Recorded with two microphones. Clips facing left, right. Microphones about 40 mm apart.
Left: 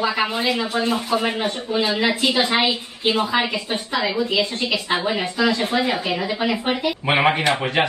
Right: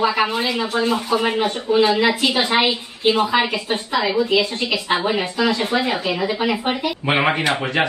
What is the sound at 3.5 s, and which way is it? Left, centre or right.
Speech, right.